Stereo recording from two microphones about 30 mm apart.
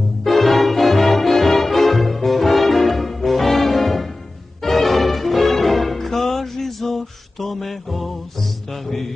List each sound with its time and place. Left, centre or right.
0.2 s music: centre